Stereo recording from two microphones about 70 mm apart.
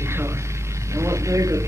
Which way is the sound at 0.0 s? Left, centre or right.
Right.